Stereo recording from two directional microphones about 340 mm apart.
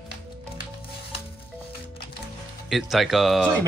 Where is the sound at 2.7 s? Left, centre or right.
Centre.